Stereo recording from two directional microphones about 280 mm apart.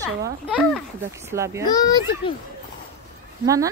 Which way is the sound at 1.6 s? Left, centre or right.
Centre.